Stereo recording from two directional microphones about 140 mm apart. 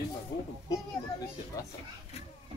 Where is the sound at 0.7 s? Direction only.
25° left (ahead or behind).